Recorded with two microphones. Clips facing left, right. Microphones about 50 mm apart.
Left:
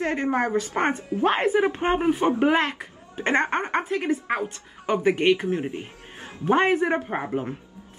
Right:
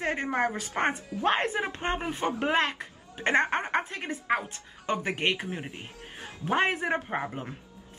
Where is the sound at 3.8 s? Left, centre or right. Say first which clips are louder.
Left 8 dB; centre.